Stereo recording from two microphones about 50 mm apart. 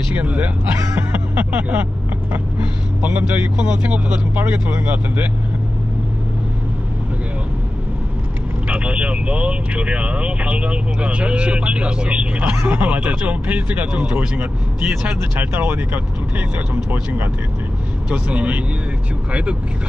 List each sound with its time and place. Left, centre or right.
0.1 s speech: right
4.4 s speech: right
8.6 s speech: right
15.3 s speech: right
18.1 s speech: right